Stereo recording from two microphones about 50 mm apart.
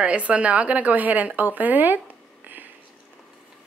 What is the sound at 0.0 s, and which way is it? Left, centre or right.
Speech, right.